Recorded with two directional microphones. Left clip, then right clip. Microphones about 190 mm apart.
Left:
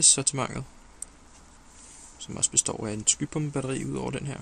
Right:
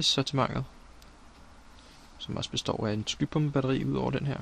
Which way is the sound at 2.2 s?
40° right (ahead or behind).